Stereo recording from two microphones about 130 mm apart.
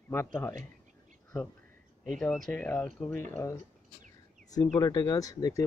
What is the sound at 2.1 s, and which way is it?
Speech, 5° left (ahead or behind).